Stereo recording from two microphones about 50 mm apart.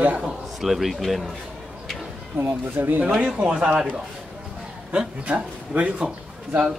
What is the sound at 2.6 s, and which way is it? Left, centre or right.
Speech, right.